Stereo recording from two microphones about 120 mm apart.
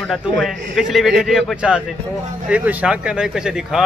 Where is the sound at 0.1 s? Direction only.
Centre (ahead or behind).